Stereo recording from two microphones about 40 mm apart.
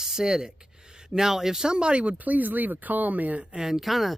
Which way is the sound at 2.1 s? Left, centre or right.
Right.